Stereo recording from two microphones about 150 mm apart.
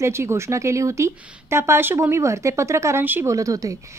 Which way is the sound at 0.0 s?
15° right (ahead or behind).